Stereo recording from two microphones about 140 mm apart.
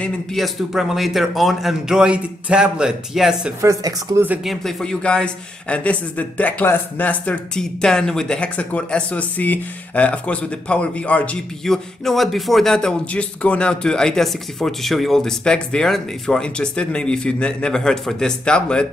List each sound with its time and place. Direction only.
0.0 s speech: centre (ahead or behind)
3.6 s speech: 20° right (ahead or behind)
4.5 s speech: centre (ahead or behind)